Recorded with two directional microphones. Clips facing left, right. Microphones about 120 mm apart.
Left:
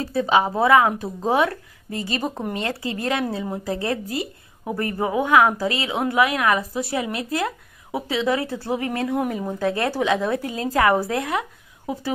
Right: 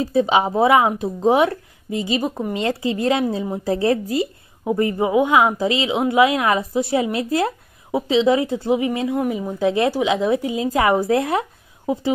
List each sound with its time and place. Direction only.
0.1 s a woman's voice: 25° right (ahead or behind); by 2.5 s 10° right (ahead or behind)
2.5 s a woman's voice: 20° right (ahead or behind)
11.1 s speech: 30° right (ahead or behind)